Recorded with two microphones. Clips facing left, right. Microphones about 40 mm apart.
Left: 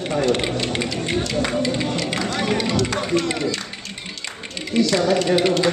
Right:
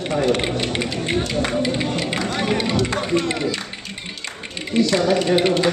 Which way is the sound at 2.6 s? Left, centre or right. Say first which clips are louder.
Even; right.